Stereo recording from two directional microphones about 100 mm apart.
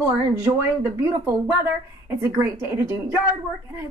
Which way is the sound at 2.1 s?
25° right (ahead or behind).